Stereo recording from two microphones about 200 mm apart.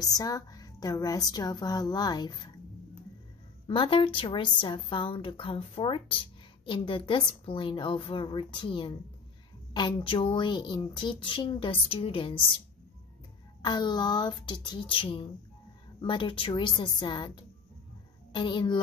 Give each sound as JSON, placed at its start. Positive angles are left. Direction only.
{"t": 0.0, "sound": "a woman's voice", "side_deg": 20}
{"t": 3.6, "sound": "a woman's voice", "side_deg": 25}
{"t": 13.6, "sound": "a woman's voice", "side_deg": 20}